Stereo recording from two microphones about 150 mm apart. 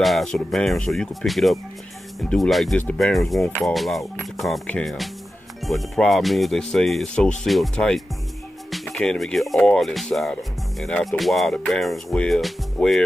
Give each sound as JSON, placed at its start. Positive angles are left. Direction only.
{"t": 0.0, "sound": "speech", "side_deg": 0}